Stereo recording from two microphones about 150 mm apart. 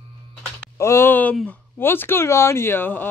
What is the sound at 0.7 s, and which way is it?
Speech, 15° left (ahead or behind).